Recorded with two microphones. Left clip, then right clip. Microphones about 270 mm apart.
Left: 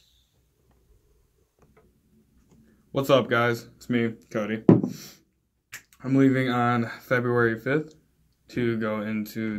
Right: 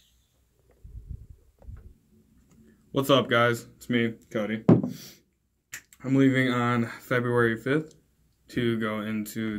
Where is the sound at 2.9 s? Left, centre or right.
Centre.